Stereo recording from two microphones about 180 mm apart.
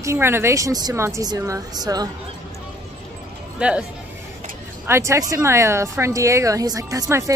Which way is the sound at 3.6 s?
5° right (ahead or behind).